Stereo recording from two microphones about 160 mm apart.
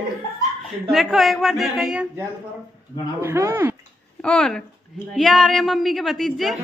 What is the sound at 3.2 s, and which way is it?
Speech, 15° right (ahead or behind).